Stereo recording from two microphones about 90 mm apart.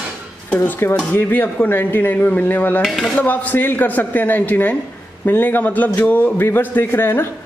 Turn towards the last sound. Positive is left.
turn(degrees=25)  # may be behind; listen again after turning